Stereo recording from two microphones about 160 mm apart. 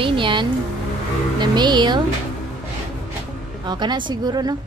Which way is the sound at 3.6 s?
25° right (ahead or behind).